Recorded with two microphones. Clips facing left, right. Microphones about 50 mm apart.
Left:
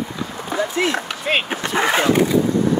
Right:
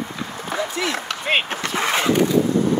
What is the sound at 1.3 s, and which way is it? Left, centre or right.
Speech, centre.